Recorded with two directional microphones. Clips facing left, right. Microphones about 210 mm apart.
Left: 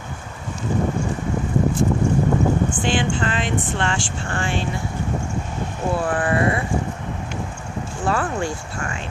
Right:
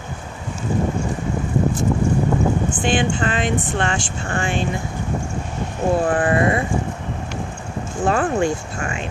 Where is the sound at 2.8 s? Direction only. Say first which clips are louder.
Right 2 dB; 15° right (ahead or behind).